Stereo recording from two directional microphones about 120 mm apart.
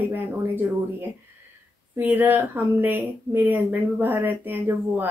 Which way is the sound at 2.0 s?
15° right (ahead or behind).